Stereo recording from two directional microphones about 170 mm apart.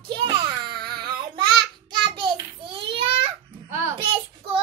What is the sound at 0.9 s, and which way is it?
Child singing, 25° right (ahead or behind).